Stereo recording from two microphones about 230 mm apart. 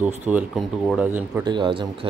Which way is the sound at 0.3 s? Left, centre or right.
Centre.